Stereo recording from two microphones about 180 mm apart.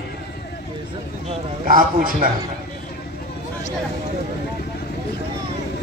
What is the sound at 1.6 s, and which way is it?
Speech, 50° right (ahead or behind).